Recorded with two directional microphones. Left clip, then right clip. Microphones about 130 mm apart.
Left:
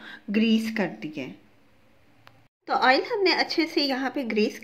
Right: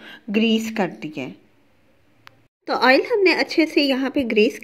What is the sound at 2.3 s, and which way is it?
A woman's voice, 40° right (ahead or behind).